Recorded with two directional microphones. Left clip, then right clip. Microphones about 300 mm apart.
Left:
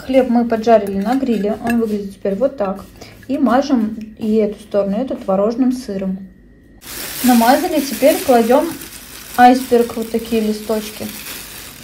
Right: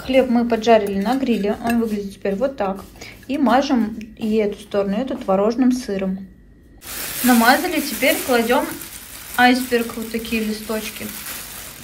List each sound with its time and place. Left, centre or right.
0.0 s a woman's voice: centre